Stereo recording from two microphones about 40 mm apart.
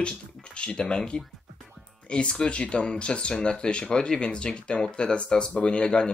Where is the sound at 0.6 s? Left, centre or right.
Left.